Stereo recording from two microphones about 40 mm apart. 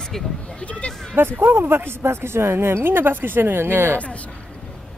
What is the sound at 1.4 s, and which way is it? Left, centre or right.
Speech, right.